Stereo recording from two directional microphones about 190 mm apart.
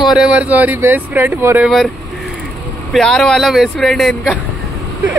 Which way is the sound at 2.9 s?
Centre (ahead or behind).